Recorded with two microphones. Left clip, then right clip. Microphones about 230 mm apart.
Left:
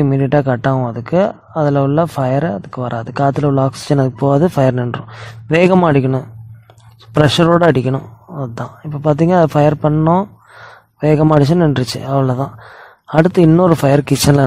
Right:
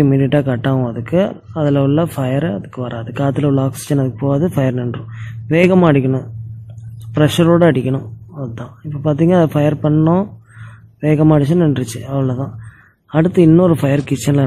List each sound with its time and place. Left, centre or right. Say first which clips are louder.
0.0 s speech: even; left